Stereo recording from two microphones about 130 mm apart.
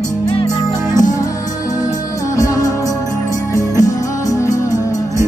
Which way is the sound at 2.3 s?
25° left (ahead or behind).